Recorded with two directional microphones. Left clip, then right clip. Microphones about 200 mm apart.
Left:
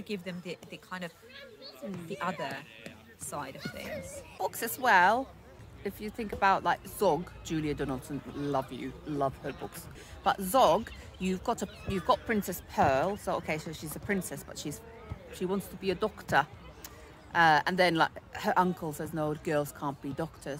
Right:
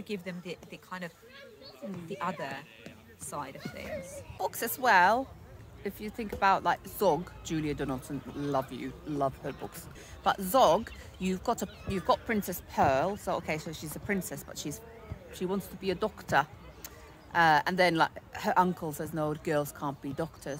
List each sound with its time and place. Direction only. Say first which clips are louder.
0.0 s a woman's voice: even; 5° left (ahead or behind)
3.8 s a child's voice: right 3 dB; 45° left (ahead or behind)
4.4 s speech: right 1 dB; 15° right (ahead or behind)